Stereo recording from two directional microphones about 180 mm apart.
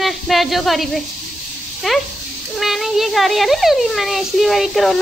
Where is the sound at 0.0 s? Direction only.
Centre (ahead or behind).